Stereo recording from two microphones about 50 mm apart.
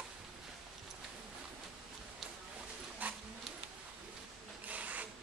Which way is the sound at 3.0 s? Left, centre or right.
Right.